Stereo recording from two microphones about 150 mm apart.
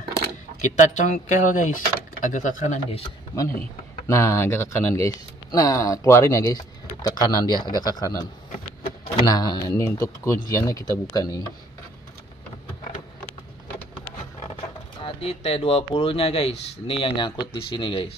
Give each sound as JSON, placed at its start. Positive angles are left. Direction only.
{"t": 0.6, "sound": "speech", "side_deg": 55}
{"t": 3.3, "sound": "speech", "side_deg": 15}
{"t": 9.2, "sound": "speech", "side_deg": 25}
{"t": 15.0, "sound": "speech", "side_deg": 40}